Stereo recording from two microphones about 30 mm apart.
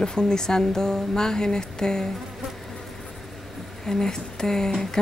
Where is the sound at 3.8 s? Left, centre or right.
Centre.